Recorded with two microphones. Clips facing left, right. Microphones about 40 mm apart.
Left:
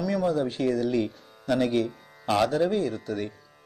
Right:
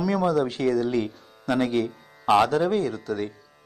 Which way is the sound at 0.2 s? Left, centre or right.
Right.